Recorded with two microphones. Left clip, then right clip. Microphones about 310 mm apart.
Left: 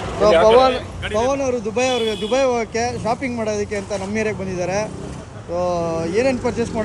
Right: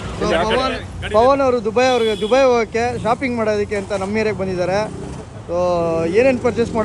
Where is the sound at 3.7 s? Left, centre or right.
Centre.